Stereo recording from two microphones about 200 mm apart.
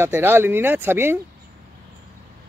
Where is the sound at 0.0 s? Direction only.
10° right (ahead or behind).